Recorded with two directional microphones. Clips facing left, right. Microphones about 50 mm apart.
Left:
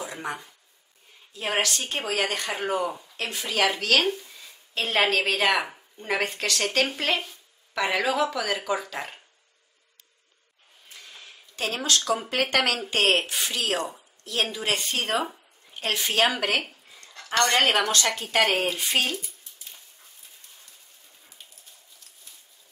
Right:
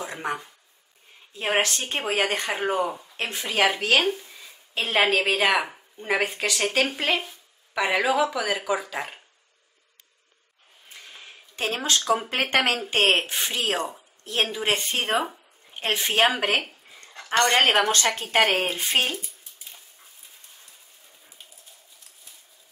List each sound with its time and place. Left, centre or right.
0.0 s a sound: right
1.3 s speech: right
3.7 s speech: centre
4.4 s a woman's voice: centre
10.9 s a sound: right
12.1 s speech: right